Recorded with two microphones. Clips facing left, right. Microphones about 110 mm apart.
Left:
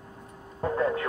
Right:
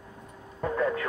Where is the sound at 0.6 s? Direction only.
30° left (ahead or behind).